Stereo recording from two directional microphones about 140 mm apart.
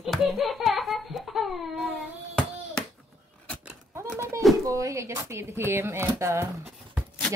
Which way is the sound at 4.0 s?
20° right (ahead or behind).